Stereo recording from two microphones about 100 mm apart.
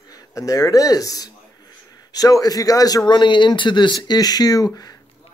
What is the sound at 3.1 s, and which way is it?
Speech, 50° left (ahead or behind).